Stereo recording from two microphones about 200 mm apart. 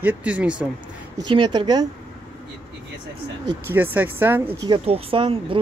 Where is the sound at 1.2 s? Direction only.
25° right (ahead or behind).